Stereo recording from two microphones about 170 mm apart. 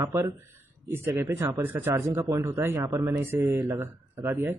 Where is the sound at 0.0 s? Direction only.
15° right (ahead or behind).